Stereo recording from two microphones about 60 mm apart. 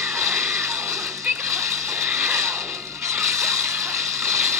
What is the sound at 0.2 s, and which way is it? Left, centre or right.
Music, right.